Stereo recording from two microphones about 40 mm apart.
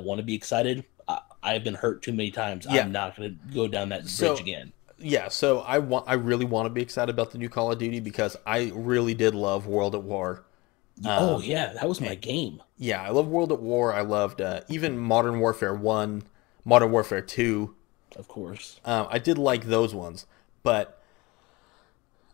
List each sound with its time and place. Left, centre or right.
0.0 s speech: centre